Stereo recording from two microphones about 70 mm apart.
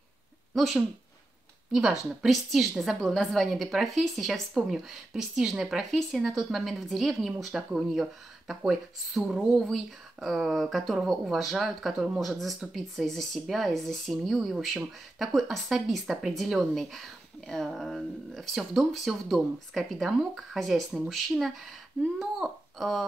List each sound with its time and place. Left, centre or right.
0.6 s a woman's voice: centre